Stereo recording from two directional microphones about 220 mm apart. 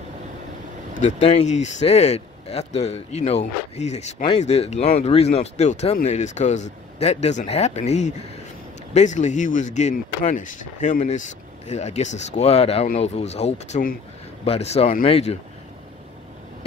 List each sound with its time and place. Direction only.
0.9 s a man's voice: 30° left (ahead or behind)